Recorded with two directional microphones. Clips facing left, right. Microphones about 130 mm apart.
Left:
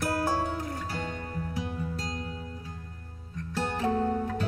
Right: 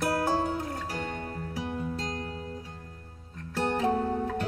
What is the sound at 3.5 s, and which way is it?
Music, 25° right (ahead or behind).